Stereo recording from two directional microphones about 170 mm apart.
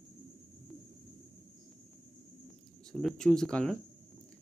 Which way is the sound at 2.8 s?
Centre (ahead or behind).